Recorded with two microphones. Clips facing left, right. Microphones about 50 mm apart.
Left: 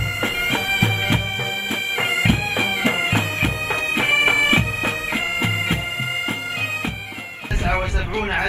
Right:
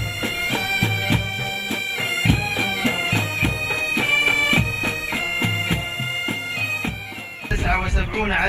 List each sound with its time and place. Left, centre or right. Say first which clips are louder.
0.2 s bagpipes: left 1 dB; left
7.6 s a man's voice: left 1 dB; right